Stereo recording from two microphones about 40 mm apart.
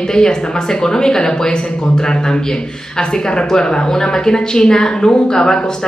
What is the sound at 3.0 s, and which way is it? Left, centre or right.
Speech, centre.